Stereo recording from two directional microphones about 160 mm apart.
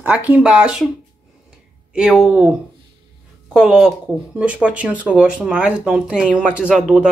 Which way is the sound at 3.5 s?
5° right (ahead or behind).